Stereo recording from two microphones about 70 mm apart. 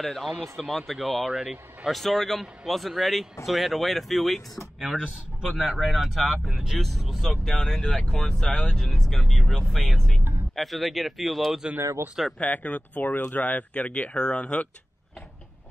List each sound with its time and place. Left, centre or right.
0.0 s speech: centre
1.9 s a man's voice: centre
12.4 s speech: left